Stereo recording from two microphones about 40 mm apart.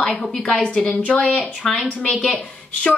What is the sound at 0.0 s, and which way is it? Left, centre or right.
Speech, centre.